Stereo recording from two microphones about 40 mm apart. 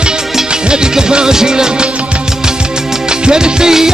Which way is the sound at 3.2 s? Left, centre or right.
Centre.